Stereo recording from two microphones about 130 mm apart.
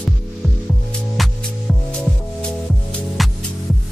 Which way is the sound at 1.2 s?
Centre (ahead or behind).